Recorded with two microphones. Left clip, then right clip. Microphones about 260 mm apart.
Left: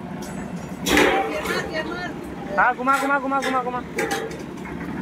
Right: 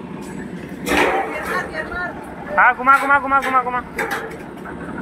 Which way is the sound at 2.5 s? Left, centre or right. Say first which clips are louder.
Right 6 dB; centre.